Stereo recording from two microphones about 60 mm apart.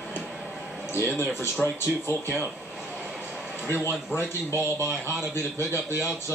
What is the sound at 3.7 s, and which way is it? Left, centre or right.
Speech, left.